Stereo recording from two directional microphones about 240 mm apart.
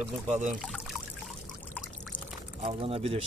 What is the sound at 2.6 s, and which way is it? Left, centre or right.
Speech, right.